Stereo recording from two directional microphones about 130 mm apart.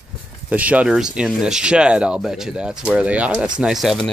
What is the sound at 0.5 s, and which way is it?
Speech, 10° right (ahead or behind).